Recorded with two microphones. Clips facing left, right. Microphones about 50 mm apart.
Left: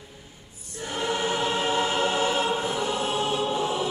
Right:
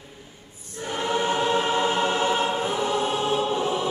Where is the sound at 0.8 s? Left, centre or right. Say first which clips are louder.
Right 2 dB; right.